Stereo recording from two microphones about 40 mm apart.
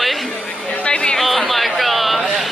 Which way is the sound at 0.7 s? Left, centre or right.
Left.